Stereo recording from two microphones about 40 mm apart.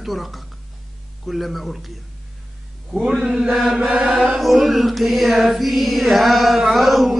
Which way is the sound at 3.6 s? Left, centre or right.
Right.